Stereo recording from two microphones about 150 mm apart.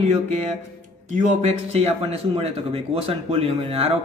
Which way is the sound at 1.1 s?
55° right (ahead or behind).